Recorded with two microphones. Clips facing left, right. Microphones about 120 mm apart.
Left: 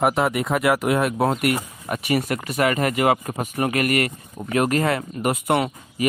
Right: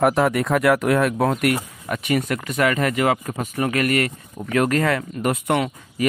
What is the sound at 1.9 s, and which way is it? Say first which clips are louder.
Speech: even; 40° left (ahead or behind).